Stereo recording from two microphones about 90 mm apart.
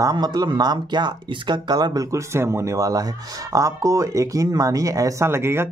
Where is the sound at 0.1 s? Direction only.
50° right (ahead or behind).